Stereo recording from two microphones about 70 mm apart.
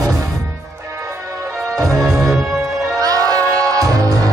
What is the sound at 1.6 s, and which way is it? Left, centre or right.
Music, right.